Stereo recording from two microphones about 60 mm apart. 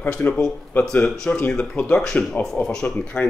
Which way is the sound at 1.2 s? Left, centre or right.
Left.